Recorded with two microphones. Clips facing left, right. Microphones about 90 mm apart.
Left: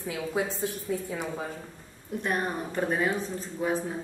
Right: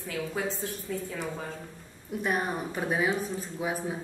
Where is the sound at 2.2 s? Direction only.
5° right (ahead or behind).